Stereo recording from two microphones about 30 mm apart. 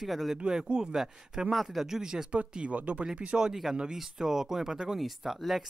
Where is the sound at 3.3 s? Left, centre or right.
Centre.